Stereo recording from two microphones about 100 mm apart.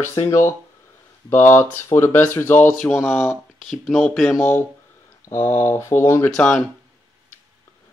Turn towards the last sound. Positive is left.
turn(degrees=10)  # may be behind; listen again after turning